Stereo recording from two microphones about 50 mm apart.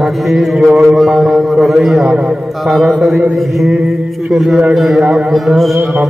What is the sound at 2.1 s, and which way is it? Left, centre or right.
Speech, centre.